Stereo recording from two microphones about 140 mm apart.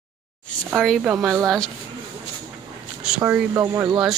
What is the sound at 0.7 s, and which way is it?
Speech, centre (ahead or behind).